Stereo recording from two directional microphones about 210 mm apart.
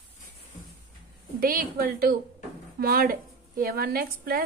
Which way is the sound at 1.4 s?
45° right (ahead or behind).